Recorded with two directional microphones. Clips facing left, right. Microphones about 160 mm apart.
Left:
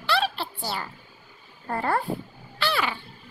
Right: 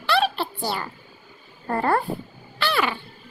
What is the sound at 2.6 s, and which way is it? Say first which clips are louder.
Music: right 3 dB; 60° right (ahead or behind).